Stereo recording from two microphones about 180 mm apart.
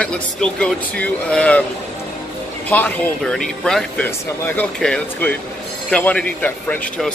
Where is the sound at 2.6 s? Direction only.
10° left (ahead or behind).